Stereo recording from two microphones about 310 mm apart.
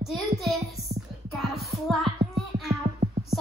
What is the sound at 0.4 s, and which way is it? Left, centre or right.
Speech, centre.